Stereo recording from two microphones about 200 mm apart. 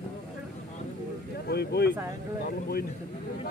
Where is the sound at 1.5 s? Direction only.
55° left (ahead or behind).